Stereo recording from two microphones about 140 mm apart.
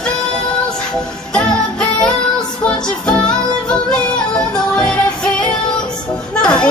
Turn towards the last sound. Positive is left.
turn(degrees=5)  # may be behind; listen again after turning